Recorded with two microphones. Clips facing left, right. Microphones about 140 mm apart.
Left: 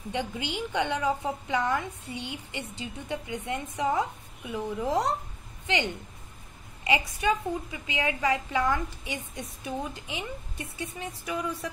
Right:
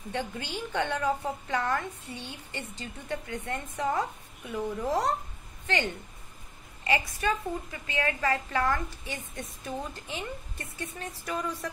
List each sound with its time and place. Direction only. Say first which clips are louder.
0.1 s a woman's voice: left 2 dB; 15° left (ahead or behind)
6.8 s a woman's voice: left 1 dB; 15° left (ahead or behind)